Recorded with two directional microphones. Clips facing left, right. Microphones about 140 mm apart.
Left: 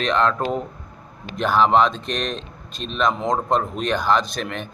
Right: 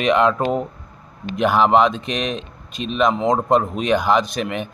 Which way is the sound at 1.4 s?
5° right (ahead or behind).